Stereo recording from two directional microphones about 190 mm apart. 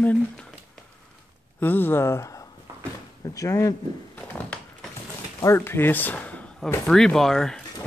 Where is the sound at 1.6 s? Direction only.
10° left (ahead or behind).